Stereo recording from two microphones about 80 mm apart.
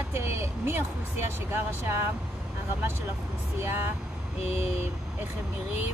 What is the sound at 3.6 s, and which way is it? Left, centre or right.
Speech, right.